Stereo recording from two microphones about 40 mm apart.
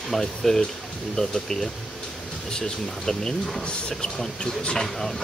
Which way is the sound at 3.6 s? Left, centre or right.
Left.